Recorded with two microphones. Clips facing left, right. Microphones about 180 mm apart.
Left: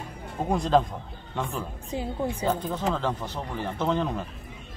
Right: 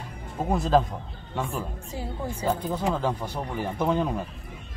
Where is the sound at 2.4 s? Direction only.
10° right (ahead or behind).